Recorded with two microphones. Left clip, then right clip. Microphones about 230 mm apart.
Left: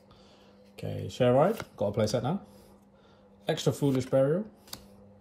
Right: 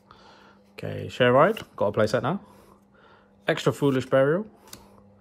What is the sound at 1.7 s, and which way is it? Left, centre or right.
Speech, centre.